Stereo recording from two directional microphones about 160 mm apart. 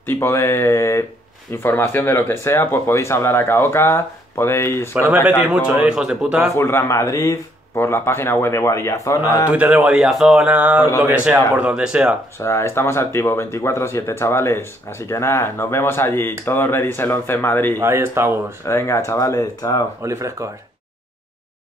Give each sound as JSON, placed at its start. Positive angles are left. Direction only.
{"t": 0.0, "sound": "speech", "side_deg": 15}
{"t": 4.9, "sound": "speech", "side_deg": -10}
{"t": 6.5, "sound": "speech", "side_deg": 15}
{"t": 9.5, "sound": "speech", "side_deg": -10}
{"t": 12.4, "sound": "speech", "side_deg": 15}
{"t": 17.7, "sound": "speech", "side_deg": -15}
{"t": 18.7, "sound": "speech", "side_deg": 15}
{"t": 20.0, "sound": "speech", "side_deg": -20}